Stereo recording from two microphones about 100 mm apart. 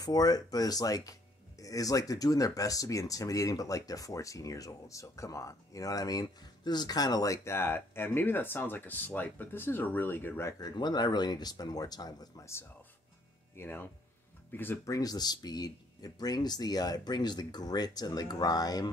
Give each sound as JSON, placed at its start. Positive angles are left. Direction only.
{"t": 0.0, "sound": "speech", "side_deg": 40}
{"t": 10.6, "sound": "speech", "side_deg": 45}
{"t": 13.6, "sound": "speech", "side_deg": 20}
{"t": 14.9, "sound": "speech", "side_deg": 40}